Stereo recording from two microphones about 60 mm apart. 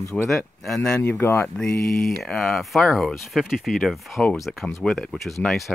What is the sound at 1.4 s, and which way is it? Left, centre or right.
Speech, centre.